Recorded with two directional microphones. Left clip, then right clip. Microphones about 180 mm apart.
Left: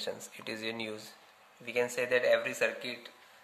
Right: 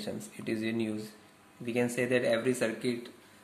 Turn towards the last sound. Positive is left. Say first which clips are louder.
# even
turn(degrees=10)  # may be behind; listen again after turning